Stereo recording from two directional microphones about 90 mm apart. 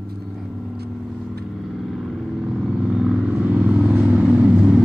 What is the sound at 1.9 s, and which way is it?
Vehicle, 5° right (ahead or behind).